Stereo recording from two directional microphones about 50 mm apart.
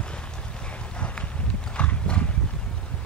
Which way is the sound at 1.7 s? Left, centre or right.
Left.